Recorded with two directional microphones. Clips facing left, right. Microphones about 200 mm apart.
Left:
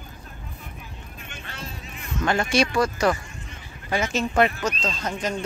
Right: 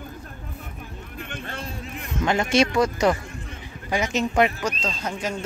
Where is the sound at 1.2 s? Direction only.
55° right (ahead or behind).